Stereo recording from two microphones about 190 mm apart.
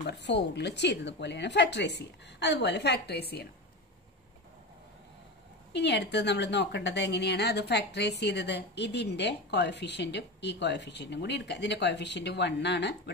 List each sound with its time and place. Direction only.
0.0 s a woman's voice: 65° left (ahead or behind)
5.7 s a woman's voice: 65° left (ahead or behind)